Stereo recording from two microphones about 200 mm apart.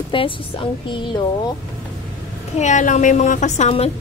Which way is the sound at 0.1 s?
25° left (ahead or behind).